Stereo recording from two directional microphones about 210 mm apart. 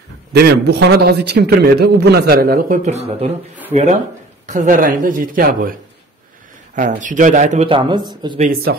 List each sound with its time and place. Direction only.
0.3 s a man's voice: 50° right (ahead or behind); by 8.4 s 20° right (ahead or behind)
8.4 s a man's voice: 45° right (ahead or behind)